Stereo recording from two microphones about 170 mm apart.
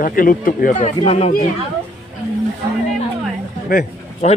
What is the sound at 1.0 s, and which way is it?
Speech, 40° left (ahead or behind).